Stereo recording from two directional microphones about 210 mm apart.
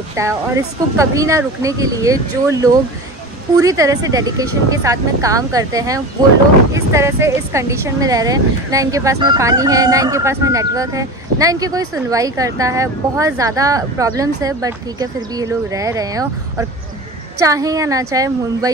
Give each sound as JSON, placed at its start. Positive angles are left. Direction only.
{"t": 0.1, "sound": "speech", "side_deg": -15}